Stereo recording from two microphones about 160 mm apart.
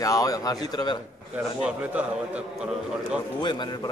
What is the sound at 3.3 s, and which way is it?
Speech, 25° left (ahead or behind).